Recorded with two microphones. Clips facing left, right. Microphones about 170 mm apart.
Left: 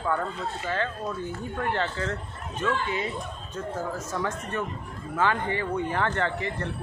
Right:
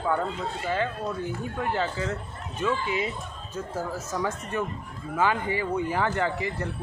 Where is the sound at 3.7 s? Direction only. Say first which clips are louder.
Right 1 dB; 10° right (ahead or behind).